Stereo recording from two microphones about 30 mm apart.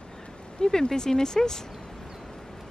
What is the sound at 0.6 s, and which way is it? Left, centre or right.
Speech, left.